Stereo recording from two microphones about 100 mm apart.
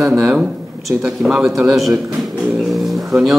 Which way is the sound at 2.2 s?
5° right (ahead or behind).